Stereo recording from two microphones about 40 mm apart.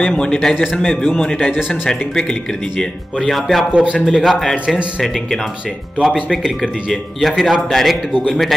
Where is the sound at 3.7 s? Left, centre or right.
Right.